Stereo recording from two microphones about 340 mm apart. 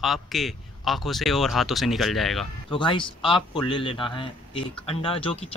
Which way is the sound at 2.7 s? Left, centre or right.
Centre.